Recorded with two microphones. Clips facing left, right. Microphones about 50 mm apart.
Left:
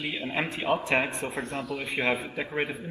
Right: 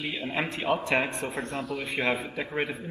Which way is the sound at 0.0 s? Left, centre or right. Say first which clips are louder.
Even; left.